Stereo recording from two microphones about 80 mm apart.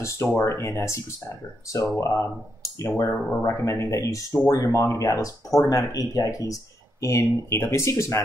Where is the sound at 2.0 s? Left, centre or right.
Left.